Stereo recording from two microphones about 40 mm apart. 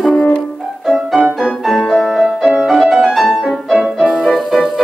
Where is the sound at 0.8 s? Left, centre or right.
Centre.